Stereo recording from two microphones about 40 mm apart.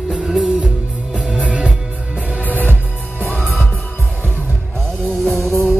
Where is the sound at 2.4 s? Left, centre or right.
Left.